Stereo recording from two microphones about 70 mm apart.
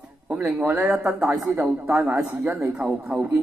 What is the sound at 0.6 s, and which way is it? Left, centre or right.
A man's voice, right.